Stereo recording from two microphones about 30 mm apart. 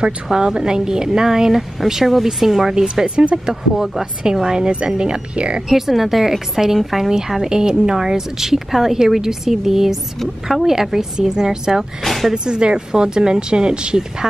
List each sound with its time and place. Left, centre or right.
0.3 s speech: right
2.7 s speech: right
3.7 s speech: centre
4.0 s speech: right
5.7 s speech: centre
7.4 s speech: right
12.0 s speech: centre
12.4 s speech: right